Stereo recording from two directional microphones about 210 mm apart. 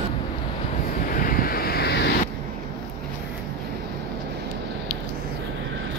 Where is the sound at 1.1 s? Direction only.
40° left (ahead or behind).